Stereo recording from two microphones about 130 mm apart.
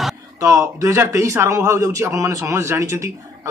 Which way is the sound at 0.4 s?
25° right (ahead or behind).